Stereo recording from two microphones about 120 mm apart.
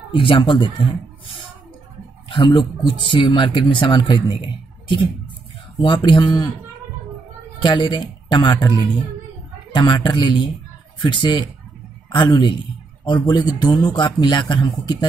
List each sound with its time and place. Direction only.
0.1 s speech: 45° left (ahead or behind)
2.2 s speech: 45° left (ahead or behind)
5.8 s a man's voice: 45° left (ahead or behind)
7.6 s a man's voice: 40° left (ahead or behind)